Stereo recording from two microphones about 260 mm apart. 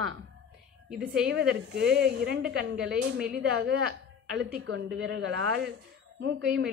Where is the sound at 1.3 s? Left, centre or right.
Right.